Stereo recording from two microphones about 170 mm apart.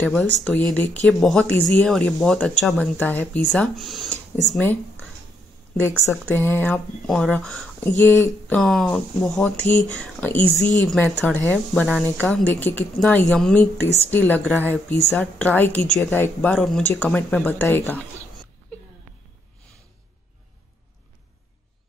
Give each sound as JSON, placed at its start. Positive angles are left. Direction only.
{"t": 0.0, "sound": "speech", "side_deg": 0}
{"t": 6.0, "sound": "speech", "side_deg": 10}
{"t": 8.5, "sound": "speech", "side_deg": 5}